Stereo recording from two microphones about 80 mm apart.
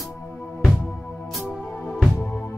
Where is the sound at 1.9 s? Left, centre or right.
Centre.